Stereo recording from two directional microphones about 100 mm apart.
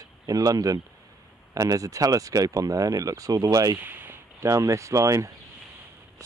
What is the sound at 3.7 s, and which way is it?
Speech, 20° right (ahead or behind).